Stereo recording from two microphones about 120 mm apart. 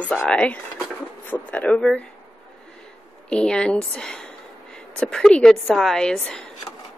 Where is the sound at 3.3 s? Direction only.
5° left (ahead or behind).